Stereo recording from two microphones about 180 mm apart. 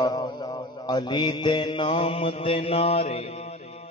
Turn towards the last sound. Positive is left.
turn(degrees=35)  # may be behind; listen again after turning